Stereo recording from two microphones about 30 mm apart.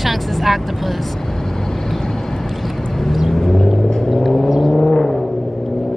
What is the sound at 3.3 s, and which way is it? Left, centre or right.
Car, centre.